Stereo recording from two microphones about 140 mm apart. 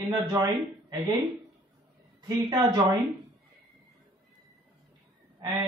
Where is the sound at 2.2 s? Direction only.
30° right (ahead or behind).